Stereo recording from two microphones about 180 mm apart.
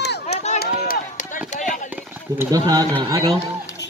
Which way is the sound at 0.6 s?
50° left (ahead or behind).